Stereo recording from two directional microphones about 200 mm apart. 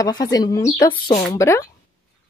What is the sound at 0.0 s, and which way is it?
Speech, 20° left (ahead or behind).